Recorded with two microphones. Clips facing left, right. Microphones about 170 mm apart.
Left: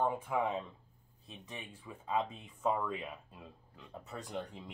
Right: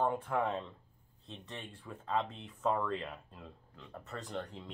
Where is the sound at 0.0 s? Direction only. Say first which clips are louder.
Right 1 dB; 5° left (ahead or behind).